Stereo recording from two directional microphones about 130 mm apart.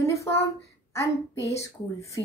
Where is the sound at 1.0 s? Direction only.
20° left (ahead or behind).